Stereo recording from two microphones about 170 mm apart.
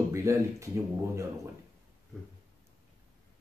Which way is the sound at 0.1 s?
15° right (ahead or behind).